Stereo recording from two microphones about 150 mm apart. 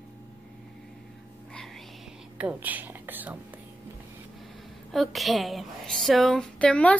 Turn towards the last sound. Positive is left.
turn(degrees=10)  # may be behind; listen again after turning